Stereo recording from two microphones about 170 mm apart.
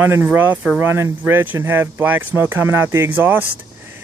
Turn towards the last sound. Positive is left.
turn(degrees=-10)  # may be behind; listen again after turning